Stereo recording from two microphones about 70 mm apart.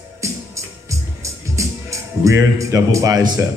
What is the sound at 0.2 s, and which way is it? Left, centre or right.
Music, right.